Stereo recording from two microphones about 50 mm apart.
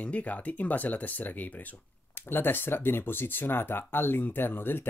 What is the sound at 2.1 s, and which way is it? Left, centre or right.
Speech, left.